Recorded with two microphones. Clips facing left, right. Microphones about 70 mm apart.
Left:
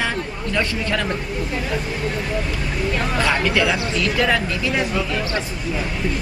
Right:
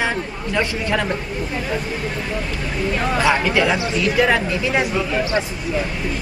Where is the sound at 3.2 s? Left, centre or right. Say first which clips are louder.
Right 2 dB; centre.